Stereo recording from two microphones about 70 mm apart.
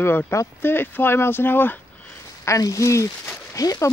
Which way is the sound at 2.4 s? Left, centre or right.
Left.